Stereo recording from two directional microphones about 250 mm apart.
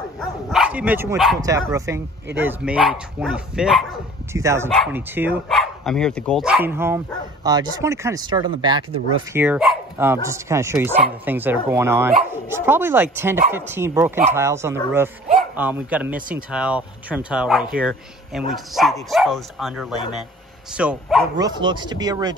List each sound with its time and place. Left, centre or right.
0.5 s speech: centre
1.4 s speech: centre
4.4 s speech: centre
9.3 s speech: centre
21.4 s speech: centre